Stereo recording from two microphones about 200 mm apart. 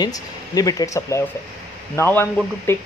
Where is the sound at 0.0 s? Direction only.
20° left (ahead or behind).